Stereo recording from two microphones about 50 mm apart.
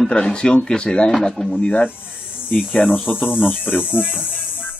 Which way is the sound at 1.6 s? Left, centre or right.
Left.